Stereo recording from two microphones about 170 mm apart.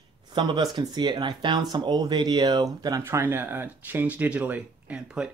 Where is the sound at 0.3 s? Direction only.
25° right (ahead or behind).